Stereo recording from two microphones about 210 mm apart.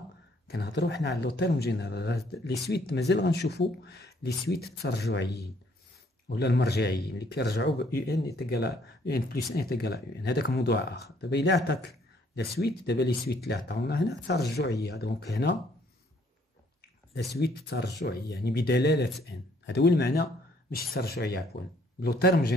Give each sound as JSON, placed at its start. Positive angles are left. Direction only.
{"t": 0.5, "sound": "speech", "side_deg": 55}
{"t": 17.3, "sound": "speech", "side_deg": 50}